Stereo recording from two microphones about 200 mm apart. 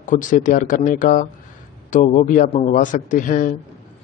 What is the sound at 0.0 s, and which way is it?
Speech, 40° left (ahead or behind).